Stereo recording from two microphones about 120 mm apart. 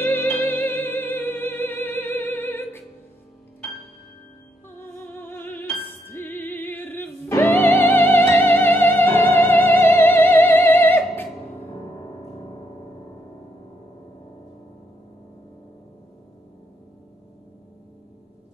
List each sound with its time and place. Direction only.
0.0 s music: 15° left (ahead or behind)
4.6 s music: 20° left (ahead or behind)